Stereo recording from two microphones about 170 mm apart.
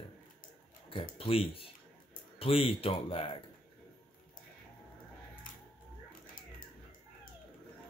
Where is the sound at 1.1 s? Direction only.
35° left (ahead or behind).